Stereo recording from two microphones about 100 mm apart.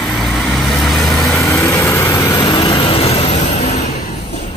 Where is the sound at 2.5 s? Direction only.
55° left (ahead or behind); by 3.3 s 80° left.